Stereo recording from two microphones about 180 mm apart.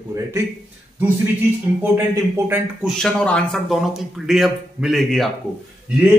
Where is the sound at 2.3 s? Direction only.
10° right (ahead or behind).